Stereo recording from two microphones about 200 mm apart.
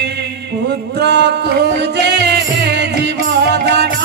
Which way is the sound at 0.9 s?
55° right (ahead or behind).